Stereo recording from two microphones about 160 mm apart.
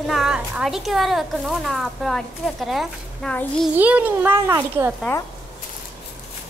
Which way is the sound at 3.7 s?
10° right (ahead or behind).